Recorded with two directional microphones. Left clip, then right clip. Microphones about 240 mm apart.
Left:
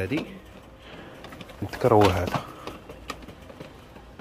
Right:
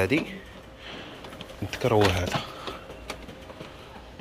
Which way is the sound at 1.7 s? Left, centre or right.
Left.